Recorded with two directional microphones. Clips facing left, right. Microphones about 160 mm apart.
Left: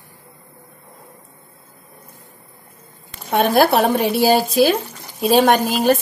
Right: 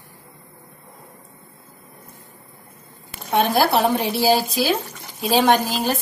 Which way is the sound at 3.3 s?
55° left (ahead or behind).